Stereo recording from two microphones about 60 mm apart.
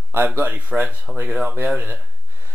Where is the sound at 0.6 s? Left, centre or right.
Right.